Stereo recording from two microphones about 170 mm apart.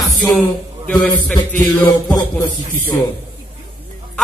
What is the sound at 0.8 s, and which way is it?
Speech, 10° left (ahead or behind).